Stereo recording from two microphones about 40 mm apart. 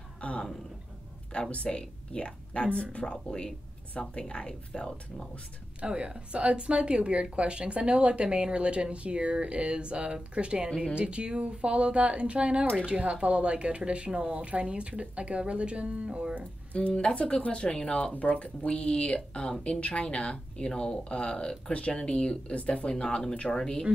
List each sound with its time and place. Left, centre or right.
0.2 s a sound: left
1.5 s speech: left
5.8 s a woman's voice: right
16.7 s speech: left
23.0 s speech: centre